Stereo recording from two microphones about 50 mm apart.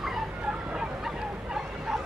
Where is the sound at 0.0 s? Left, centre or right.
Centre.